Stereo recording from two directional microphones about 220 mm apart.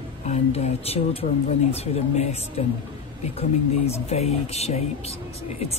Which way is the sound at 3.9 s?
30° left (ahead or behind).